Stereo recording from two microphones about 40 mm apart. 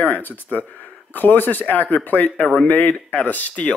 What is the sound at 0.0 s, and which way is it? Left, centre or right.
Speech, left.